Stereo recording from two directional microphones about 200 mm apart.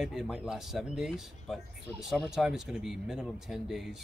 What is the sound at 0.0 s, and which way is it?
Speech, centre (ahead or behind).